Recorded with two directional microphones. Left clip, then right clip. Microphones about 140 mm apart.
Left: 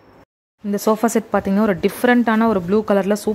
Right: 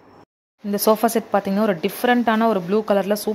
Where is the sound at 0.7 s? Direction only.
25° left (ahead or behind).